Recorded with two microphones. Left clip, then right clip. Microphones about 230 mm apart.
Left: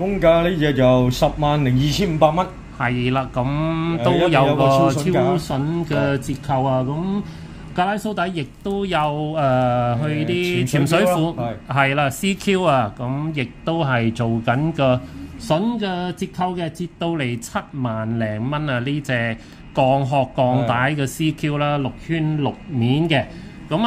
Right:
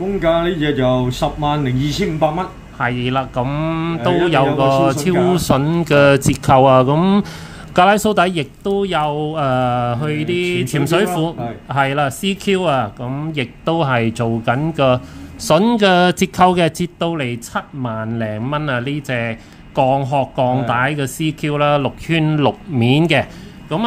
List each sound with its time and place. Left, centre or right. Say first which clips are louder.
0.2 s speech: left 1 dB; left
2.8 s speech: right 3 dB; centre
5.3 s speech: right 6 dB; right
7.7 s speech: right 9 dB; right; by 15.0 s centre
15.4 s speech: right 9 dB; right
17.0 s speech: right 2 dB; centre
22.0 s speech: right 7 dB; right
23.7 s speech: right 1 dB; centre